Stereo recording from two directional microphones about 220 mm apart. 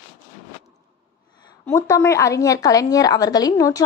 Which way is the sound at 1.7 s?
15° left (ahead or behind).